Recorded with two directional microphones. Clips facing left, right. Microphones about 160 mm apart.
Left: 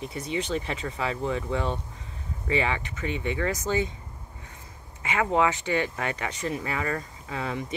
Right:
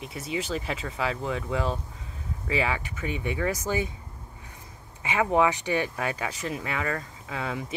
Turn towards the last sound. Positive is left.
turn(degrees=0)  # may be behind; listen again after turning